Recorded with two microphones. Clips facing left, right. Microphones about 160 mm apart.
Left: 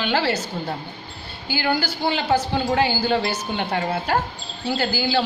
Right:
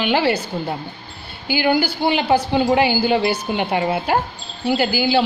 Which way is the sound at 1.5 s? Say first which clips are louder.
Right 5 dB; 15° right (ahead or behind).